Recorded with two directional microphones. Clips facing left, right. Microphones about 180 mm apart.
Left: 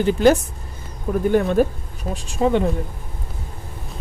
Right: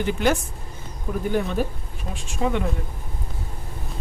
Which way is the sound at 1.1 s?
45° left (ahead or behind).